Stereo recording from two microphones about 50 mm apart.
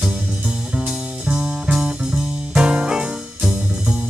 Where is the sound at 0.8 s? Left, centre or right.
Centre.